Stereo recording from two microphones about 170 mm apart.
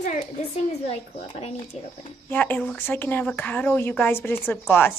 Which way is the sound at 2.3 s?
10° left (ahead or behind).